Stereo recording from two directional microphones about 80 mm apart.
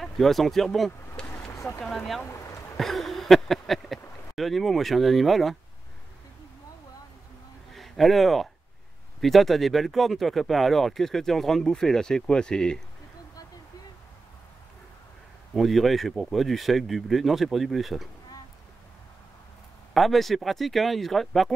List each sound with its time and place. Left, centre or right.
0.0 s speech: centre
1.2 s vehicle: left
1.9 s speech: centre
2.2 s a sound: left
2.8 s a sound: centre
4.4 s speech: centre
7.7 s a man's voice: centre
15.5 s speech: centre
19.9 s speech: centre